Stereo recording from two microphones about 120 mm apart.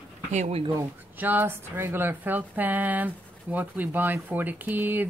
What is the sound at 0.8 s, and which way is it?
Speech, 15° right (ahead or behind).